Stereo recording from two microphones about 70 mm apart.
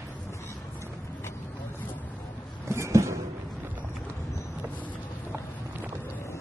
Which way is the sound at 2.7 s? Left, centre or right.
Right.